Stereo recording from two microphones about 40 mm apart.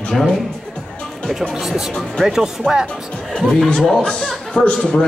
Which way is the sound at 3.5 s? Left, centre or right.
Left.